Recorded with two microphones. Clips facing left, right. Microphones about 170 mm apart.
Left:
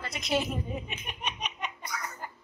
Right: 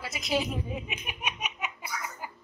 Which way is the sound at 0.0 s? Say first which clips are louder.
Even; centre (ahead or behind).